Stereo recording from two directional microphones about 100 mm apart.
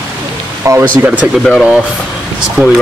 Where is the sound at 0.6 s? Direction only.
30° right (ahead or behind).